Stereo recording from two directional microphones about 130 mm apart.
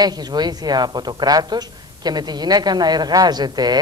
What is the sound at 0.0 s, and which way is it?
A woman's voice, 30° right (ahead or behind).